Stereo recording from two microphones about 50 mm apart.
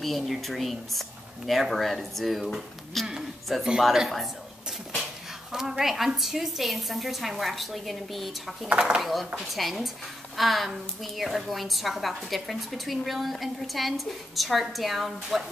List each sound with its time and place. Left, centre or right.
0.0 s a woman's voice: centre
8.6 s speech: centre
9.0 s a woman's voice: centre